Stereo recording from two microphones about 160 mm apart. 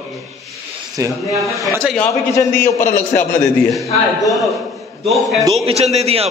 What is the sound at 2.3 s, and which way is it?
Speech, 20° left (ahead or behind).